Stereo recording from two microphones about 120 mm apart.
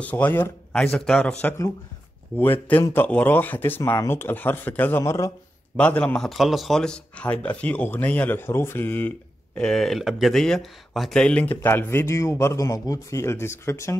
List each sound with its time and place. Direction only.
0.0 s speech: 15° left (ahead or behind)
0.7 s speech: 5° left (ahead or behind)
2.3 s speech: 15° left (ahead or behind)
5.8 s speech: 10° left (ahead or behind)
9.6 s speech: centre (ahead or behind); by 13.9 s 25° left (ahead or behind)